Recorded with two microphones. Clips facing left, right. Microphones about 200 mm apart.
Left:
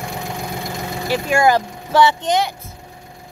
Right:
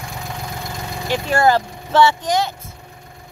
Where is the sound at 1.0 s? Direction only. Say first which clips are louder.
Left 1 dB; 10° left (ahead or behind).